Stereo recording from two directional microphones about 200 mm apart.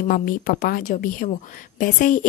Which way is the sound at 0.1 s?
45° left (ahead or behind).